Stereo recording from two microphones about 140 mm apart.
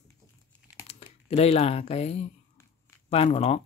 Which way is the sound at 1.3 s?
45° left (ahead or behind).